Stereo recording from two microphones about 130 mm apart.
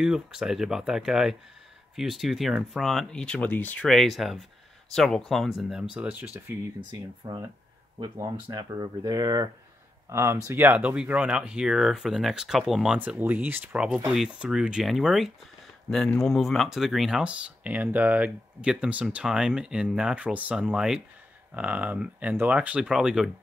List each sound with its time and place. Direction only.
0.0 s speech: 5° right (ahead or behind)
6.9 s speech: 35° right (ahead or behind); by 23.3 s 5° right (ahead or behind)